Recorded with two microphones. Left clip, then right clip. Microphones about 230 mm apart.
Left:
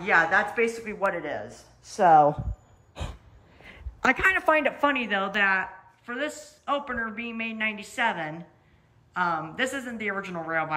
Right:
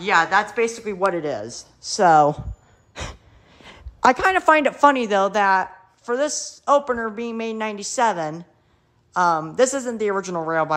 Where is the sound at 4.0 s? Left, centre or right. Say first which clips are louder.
Right 6 dB; centre.